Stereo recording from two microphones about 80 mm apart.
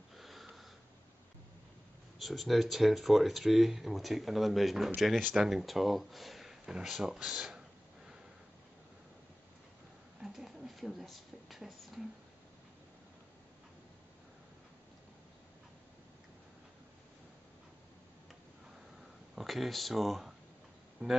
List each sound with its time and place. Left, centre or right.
0.1 s wheeze: centre
2.1 s speech: centre
10.2 s a sound: centre
19.3 s speech: centre
21.0 s speech: right